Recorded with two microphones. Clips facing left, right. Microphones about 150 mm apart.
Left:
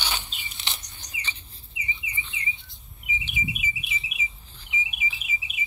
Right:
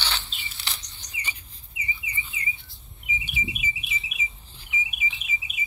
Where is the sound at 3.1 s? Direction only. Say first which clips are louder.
Even; 15° left (ahead or behind).